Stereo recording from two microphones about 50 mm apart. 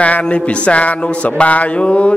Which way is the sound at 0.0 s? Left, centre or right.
Left.